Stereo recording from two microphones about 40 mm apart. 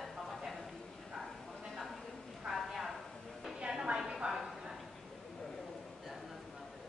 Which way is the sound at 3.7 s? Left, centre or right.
Centre.